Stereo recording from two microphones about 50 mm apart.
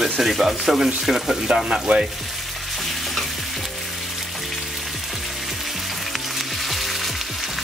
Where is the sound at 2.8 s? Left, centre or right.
Centre.